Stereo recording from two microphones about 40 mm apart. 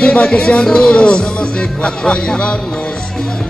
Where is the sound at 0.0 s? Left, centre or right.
Left.